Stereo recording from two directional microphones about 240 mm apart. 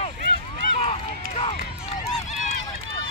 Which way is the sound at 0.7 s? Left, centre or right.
Left.